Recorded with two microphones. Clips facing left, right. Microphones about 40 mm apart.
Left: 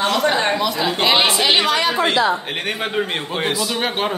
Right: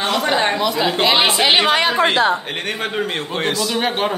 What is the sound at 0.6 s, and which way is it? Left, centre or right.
Speech, centre.